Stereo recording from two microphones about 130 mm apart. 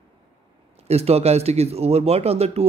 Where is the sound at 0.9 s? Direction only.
55° right (ahead or behind).